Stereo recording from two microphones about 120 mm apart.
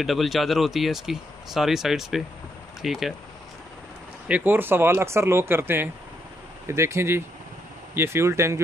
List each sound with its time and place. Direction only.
0.0 s speech: centre (ahead or behind)
4.3 s speech: 15° right (ahead or behind)